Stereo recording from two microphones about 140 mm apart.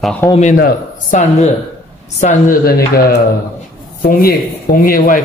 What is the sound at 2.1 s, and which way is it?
Speech, 65° left (ahead or behind).